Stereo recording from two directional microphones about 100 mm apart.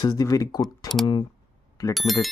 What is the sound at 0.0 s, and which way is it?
Speech, 40° left (ahead or behind).